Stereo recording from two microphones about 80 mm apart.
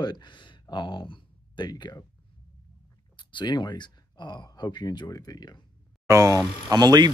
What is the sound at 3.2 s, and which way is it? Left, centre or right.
Speech, left.